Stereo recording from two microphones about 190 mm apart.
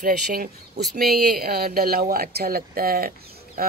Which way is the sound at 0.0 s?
50° right (ahead or behind).